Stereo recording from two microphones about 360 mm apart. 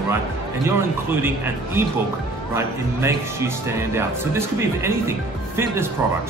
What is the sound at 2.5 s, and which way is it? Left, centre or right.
Speech, centre.